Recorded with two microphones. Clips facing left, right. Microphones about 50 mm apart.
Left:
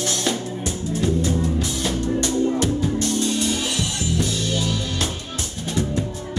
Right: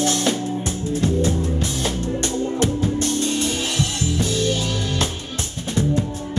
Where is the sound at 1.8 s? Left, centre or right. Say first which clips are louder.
Left 1 dB; right.